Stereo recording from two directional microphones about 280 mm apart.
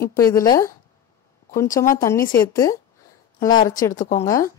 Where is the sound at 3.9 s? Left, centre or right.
Left.